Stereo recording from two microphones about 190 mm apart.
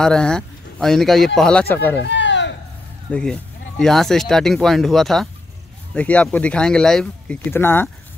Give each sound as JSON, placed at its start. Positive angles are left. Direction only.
{"t": 0.0, "sound": "speech", "side_deg": 5}
{"t": 2.0, "sound": "a sound", "side_deg": 70}
{"t": 3.1, "sound": "speech", "side_deg": 5}